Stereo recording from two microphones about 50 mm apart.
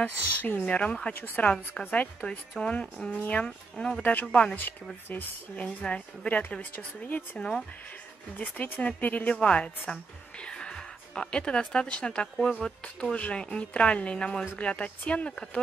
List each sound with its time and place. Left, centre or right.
0.0 s speech: left
0.7 s a woman's voice: left
1.2 s speech: left
1.8 s a woman's voice: centre
3.1 s speech: left
3.4 s a woman's voice: centre
4.0 s a woman's voice: left
7.3 s speech: centre
8.4 s speech: left
9.3 s a woman's voice: centre